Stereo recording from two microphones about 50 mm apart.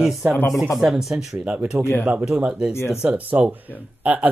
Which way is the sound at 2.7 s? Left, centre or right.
Left.